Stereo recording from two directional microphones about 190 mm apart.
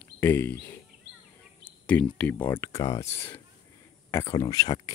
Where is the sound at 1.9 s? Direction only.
5° left (ahead or behind).